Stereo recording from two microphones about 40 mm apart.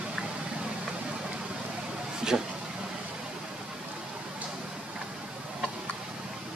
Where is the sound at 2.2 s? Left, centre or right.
Centre.